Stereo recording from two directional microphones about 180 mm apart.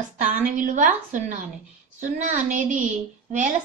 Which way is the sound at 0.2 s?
45° right (ahead or behind).